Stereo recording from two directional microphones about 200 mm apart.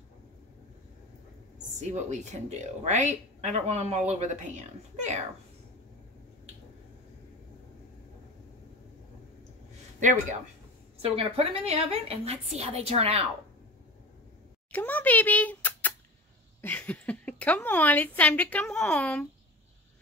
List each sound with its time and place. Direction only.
1.8 s speech: 35° right (ahead or behind)
11.0 s speech: 30° right (ahead or behind)
14.7 s a woman's voice: 10° left (ahead or behind)